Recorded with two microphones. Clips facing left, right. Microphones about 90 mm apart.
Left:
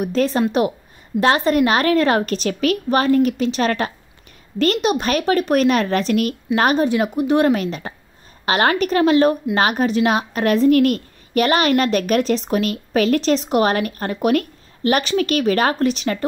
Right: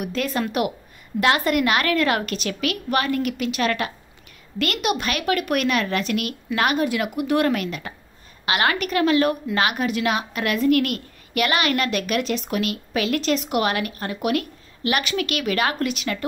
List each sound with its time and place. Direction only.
0.0 s a woman's voice: 30° left (ahead or behind)